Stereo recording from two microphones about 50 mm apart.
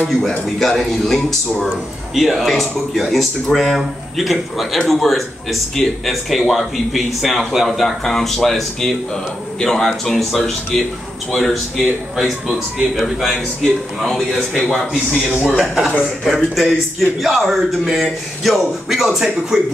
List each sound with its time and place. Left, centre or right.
0.6 s speech: centre
15.3 s speech: centre
15.6 s speech: centre
18.9 s speech: centre